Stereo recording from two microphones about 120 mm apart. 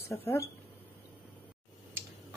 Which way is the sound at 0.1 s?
20° left (ahead or behind).